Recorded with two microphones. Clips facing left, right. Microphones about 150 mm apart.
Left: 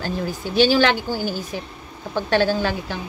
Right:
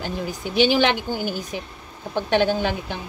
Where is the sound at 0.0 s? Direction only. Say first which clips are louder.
Left 2 dB; 20° right (ahead or behind).